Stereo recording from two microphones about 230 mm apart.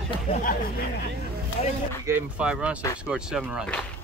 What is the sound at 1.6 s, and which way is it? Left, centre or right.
Speech, left.